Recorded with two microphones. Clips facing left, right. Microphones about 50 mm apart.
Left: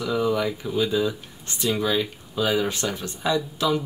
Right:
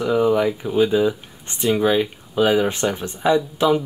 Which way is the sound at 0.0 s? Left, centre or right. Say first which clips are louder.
Right 6 dB; right.